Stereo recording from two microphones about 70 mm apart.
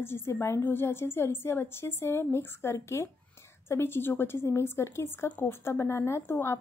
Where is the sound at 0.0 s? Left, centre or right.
Left.